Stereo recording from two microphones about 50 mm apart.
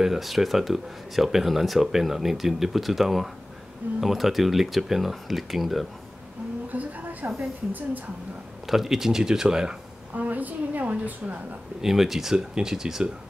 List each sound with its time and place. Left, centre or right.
0.0 s speech: centre
6.7 s a sound: right
8.6 s speech: centre
10.1 s a woman's voice: right
11.8 s speech: centre